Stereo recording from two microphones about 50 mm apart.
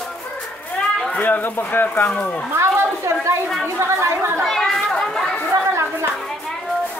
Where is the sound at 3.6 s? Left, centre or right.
Right.